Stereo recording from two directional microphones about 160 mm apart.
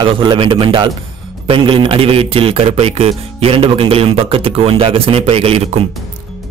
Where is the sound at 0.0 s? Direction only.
30° right (ahead or behind).